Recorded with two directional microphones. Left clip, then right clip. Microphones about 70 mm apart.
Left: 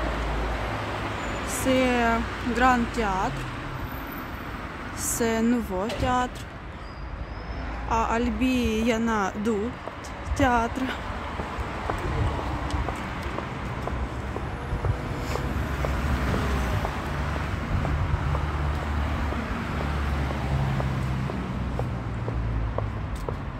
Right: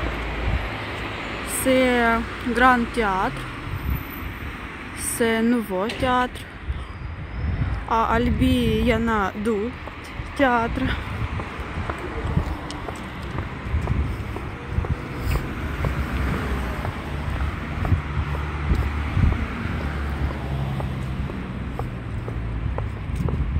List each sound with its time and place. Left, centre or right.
1.0 s vehicle: centre
1.7 s speech: right
5.2 s speech: right
7.9 s speech: right
10.3 s speech: centre
16.2 s vehicle: centre